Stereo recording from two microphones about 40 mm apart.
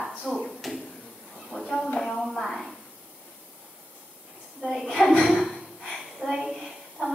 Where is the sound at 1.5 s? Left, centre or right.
Right.